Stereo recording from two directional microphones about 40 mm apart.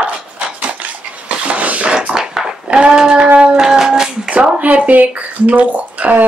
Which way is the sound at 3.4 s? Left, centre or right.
Centre.